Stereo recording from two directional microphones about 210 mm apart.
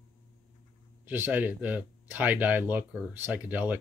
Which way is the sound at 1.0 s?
10° right (ahead or behind).